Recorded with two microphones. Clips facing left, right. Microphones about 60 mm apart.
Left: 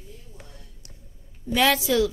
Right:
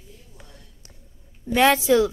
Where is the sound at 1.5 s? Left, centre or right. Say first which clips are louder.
Right 3 dB; right.